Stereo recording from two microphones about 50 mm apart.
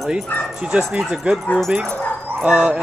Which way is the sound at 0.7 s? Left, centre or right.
Right.